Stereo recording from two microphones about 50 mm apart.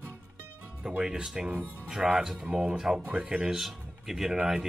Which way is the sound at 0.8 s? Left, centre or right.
Centre.